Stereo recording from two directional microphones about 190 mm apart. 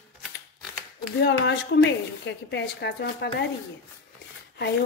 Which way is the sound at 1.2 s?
65° left (ahead or behind).